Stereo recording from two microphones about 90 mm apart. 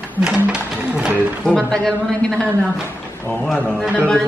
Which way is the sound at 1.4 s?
5° left (ahead or behind).